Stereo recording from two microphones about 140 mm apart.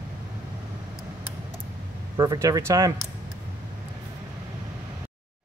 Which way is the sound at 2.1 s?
20° right (ahead or behind).